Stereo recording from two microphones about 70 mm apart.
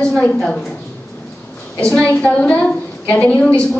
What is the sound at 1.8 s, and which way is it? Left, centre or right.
A woman's voice, centre.